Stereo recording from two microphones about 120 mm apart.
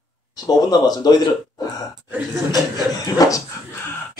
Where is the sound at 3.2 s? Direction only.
30° left (ahead or behind).